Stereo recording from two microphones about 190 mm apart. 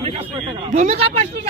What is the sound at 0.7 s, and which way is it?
Speech, 35° right (ahead or behind).